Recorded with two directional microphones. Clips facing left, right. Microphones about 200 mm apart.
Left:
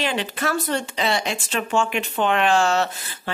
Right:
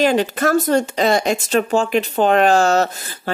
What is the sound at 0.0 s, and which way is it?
A woman's voice, 40° right (ahead or behind).